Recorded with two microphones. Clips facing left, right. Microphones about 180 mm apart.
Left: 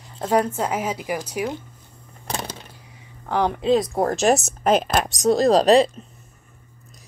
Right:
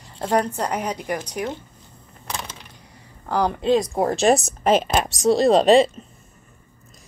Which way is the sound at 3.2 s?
Centre (ahead or behind).